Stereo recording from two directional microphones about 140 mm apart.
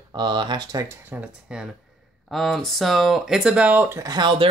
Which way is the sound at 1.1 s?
5° right (ahead or behind).